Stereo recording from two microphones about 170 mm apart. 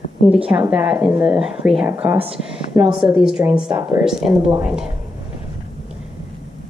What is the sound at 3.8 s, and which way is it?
Speech, 15° right (ahead or behind).